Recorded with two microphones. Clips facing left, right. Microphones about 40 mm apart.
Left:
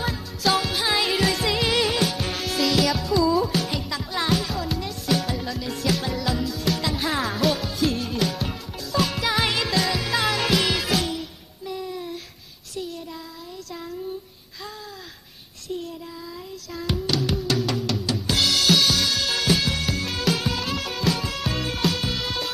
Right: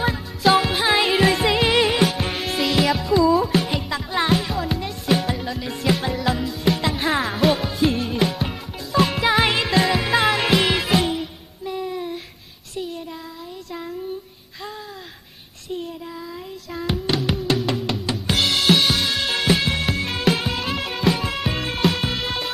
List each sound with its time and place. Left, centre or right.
0.0 s music: right
6.9 s music: centre
7.2 s music: right
16.7 s music: right
18.2 s drum kit: centre
19.5 s music: centre